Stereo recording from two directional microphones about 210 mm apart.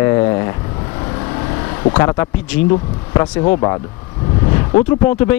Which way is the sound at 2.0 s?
15° left (ahead or behind).